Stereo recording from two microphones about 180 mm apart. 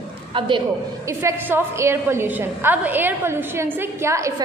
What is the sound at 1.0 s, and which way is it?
A woman's voice, 15° right (ahead or behind).